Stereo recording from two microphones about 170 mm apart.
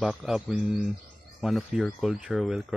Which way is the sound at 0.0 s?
Centre (ahead or behind).